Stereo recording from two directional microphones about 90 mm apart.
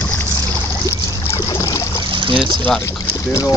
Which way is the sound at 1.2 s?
35° left (ahead or behind).